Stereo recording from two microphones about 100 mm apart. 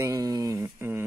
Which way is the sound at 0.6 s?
20° right (ahead or behind).